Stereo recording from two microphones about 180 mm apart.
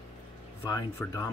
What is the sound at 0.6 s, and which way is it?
Speech, 20° left (ahead or behind).